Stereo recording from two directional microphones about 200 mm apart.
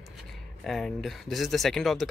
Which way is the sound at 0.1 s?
Centre (ahead or behind).